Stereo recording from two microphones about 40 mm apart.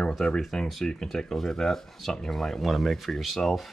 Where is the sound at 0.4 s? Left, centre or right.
Centre.